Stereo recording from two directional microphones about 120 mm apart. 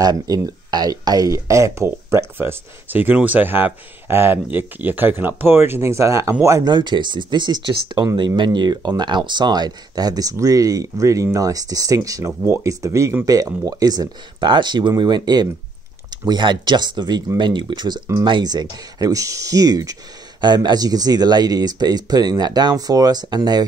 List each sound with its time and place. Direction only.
0.0 s speech: 35° right (ahead or behind)
6.7 s speech: 40° right (ahead or behind)